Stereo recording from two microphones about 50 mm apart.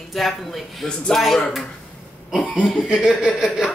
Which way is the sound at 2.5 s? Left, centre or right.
Centre.